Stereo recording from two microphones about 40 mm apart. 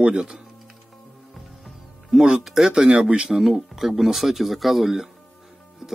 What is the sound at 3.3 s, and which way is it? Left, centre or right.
Speech, centre.